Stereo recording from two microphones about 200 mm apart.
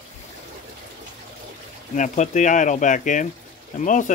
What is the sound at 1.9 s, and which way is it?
Speech, 40° left (ahead or behind).